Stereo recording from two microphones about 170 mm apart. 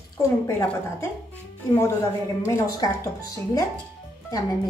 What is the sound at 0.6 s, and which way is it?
Speech, 10° left (ahead or behind).